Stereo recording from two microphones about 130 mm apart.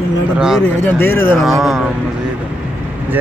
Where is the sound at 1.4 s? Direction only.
Centre (ahead or behind).